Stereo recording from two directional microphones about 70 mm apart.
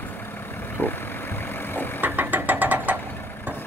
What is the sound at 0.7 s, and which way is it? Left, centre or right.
Vehicle, left.